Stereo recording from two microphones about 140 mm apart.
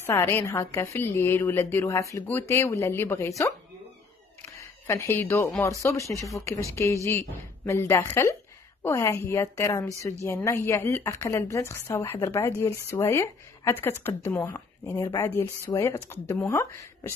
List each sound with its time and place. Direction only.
0.0 s a woman's voice: 20° left (ahead or behind)
4.6 s a woman's voice: 20° left (ahead or behind)